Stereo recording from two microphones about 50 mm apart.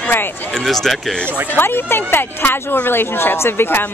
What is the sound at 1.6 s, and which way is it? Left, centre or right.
Speech, left.